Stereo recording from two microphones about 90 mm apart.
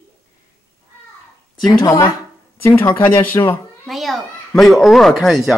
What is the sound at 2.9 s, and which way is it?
Speech, 30° left (ahead or behind).